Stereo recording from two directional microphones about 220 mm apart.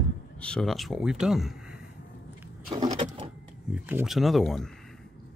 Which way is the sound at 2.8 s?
25° right (ahead or behind).